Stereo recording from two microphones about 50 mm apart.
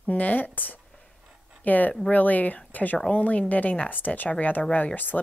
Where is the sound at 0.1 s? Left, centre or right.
Left.